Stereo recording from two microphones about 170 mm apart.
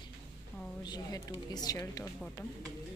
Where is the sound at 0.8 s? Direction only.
20° left (ahead or behind).